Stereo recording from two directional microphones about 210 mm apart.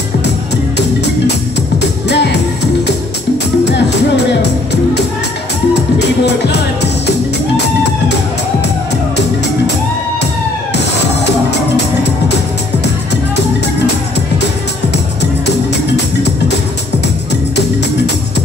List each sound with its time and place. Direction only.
1.8 s music: 55° left (ahead or behind)
5.9 s music: 55° left (ahead or behind)
16.2 s music: 55° left (ahead or behind)